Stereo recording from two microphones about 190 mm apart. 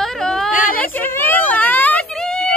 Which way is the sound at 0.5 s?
45° left (ahead or behind).